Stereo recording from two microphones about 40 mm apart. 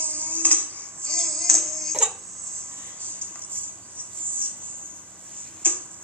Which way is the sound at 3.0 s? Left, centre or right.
Right.